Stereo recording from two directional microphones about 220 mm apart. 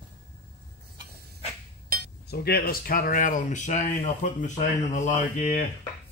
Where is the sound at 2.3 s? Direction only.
45° left (ahead or behind).